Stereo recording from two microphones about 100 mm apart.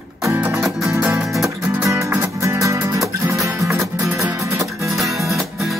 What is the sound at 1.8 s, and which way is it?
Music, 30° right (ahead or behind).